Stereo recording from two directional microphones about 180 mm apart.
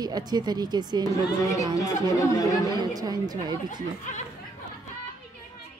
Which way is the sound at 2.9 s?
20° right (ahead or behind).